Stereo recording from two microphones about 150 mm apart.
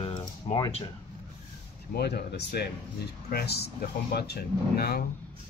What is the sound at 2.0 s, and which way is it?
Speech, 90° left.